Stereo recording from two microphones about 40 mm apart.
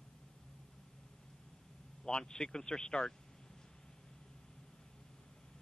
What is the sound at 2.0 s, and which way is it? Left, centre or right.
Speech, centre.